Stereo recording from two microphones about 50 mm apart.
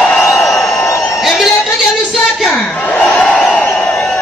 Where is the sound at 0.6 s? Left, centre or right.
Left.